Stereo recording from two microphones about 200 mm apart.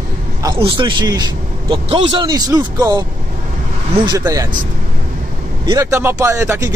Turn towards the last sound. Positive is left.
turn(degrees=-15)  # may be behind; listen again after turning